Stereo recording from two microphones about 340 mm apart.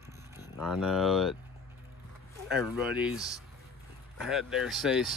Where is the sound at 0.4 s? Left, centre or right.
Centre.